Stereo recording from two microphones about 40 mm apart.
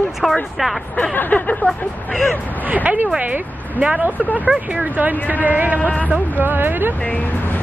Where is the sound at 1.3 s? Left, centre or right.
Left.